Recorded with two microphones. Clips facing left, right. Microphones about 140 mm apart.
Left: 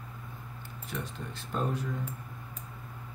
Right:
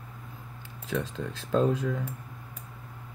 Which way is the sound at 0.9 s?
90° right.